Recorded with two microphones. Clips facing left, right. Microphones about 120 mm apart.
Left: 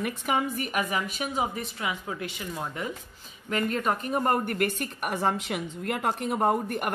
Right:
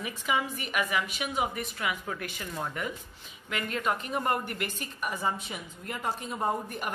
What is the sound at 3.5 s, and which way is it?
A woman's voice, 40° left (ahead or behind).